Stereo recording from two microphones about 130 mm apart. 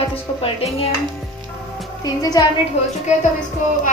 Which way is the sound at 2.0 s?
30° left (ahead or behind).